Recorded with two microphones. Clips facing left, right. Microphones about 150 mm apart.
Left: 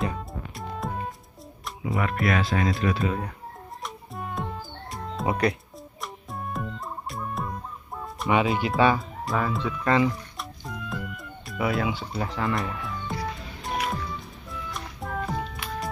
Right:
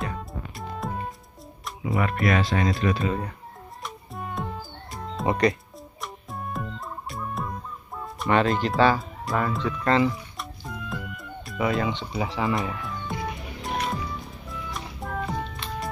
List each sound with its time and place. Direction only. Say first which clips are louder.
0.0 s music: left 2 dB; centre (ahead or behind)
1.9 s speech: right 2 dB; centre (ahead or behind)
3.8 s music: even; centre (ahead or behind)
8.3 s speech: right 1 dB; 10° left (ahead or behind)
8.9 s speech: even; centre (ahead or behind)
9.6 s speech: right 1 dB; 10° left (ahead or behind)
10.6 s music: left 1 dB; centre (ahead or behind)
12.1 s speech: right 2 dB; 5° right (ahead or behind)
13.1 s music: even; 20° right (ahead or behind)
13.6 s music: even; centre (ahead or behind)